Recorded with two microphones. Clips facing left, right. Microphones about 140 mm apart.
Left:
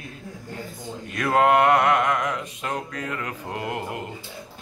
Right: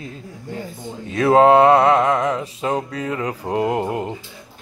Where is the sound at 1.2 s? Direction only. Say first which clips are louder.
Right 7 dB; 30° right (ahead or behind).